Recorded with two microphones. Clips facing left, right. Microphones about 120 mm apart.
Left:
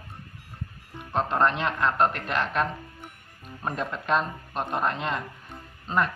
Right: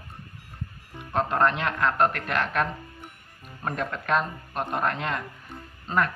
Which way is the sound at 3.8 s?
Centre (ahead or behind).